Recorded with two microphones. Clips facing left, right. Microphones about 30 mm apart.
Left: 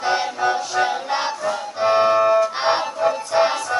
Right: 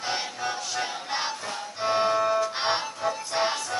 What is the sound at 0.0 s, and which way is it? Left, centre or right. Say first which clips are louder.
Music: left 10 dB; centre.